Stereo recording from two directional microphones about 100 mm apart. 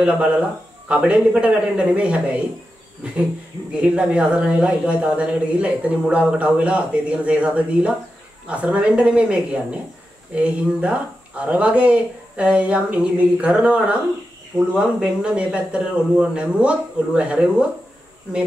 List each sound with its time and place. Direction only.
0.8 s a man's voice: 15° right (ahead or behind)
3.7 s a man's voice: 10° right (ahead or behind)